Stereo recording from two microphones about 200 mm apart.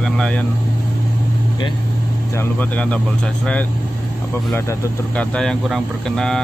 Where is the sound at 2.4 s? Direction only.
5° left (ahead or behind).